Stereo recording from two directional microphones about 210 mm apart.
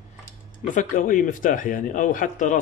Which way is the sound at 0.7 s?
40° left (ahead or behind).